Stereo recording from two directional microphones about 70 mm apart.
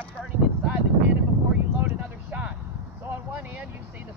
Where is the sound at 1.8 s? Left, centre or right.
Right.